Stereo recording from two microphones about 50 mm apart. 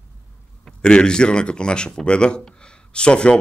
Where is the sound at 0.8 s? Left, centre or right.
Centre.